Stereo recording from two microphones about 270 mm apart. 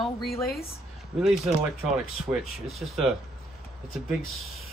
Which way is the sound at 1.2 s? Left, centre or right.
Centre.